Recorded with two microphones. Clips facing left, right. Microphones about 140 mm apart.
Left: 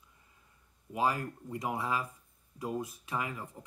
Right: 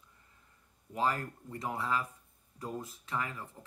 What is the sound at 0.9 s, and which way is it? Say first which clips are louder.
Speech: left 1 dB; 10° left (ahead or behind).